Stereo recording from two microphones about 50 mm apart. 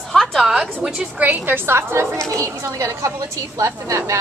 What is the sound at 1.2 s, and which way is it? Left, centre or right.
Speech, right.